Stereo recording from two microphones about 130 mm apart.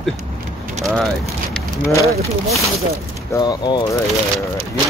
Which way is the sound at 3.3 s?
30° left (ahead or behind).